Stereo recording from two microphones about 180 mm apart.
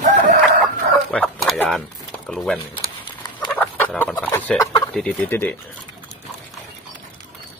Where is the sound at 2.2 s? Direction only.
5° left (ahead or behind).